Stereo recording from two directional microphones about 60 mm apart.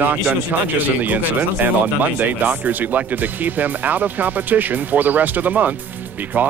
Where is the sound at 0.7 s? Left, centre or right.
Right.